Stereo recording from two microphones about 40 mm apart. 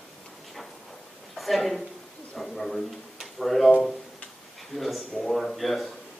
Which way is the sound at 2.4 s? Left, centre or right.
Centre.